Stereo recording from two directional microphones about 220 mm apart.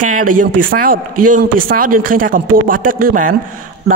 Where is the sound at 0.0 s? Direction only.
35° right (ahead or behind).